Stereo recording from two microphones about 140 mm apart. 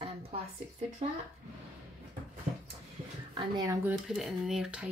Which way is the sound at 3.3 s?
30° right (ahead or behind).